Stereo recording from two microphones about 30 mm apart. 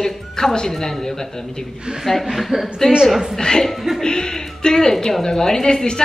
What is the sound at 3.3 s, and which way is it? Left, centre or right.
Speech, centre.